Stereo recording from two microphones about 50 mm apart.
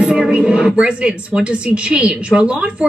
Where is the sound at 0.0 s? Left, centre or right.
Centre.